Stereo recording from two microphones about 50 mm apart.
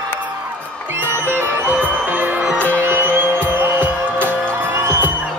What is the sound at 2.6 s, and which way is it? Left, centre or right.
Music, right.